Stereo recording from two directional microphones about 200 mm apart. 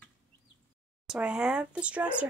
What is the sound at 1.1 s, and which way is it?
Speech, 5° right (ahead or behind).